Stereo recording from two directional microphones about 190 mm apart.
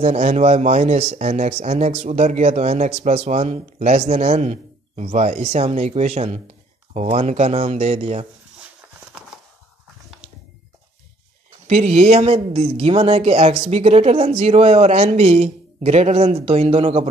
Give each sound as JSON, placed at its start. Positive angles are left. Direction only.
{"t": 0.0, "sound": "speech", "side_deg": -35}
{"t": 11.6, "sound": "speech", "side_deg": -35}